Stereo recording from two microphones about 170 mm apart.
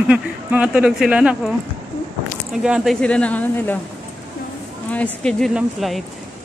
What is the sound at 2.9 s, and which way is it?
Speech, 5° left (ahead or behind).